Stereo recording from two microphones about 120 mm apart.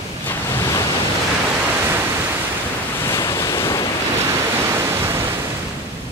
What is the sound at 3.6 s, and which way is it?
Waves, 25° left (ahead or behind).